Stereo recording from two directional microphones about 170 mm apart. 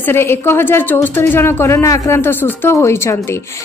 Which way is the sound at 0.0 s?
15° left (ahead or behind).